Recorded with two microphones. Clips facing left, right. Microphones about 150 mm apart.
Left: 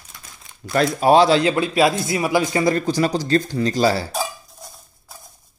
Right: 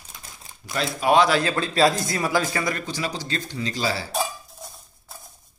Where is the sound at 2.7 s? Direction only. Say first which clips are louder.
Left 9 dB; 35° left (ahead or behind).